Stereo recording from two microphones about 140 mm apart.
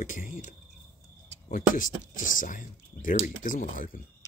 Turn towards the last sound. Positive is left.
turn(degrees=75)  # may be behind; listen again after turning